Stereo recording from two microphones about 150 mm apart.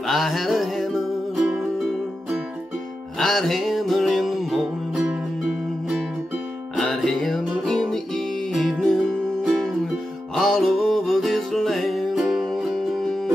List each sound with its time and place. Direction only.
0.0 s music: centre (ahead or behind)